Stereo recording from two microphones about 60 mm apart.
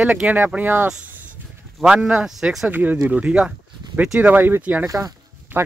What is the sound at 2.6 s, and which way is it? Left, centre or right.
Speech, right.